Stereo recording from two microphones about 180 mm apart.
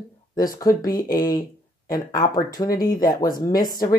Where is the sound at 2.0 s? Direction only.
25° left (ahead or behind).